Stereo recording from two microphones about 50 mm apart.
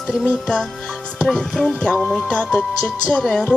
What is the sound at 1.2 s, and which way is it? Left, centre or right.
Speech, centre.